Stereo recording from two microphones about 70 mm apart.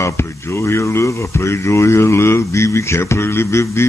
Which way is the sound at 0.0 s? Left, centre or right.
Left.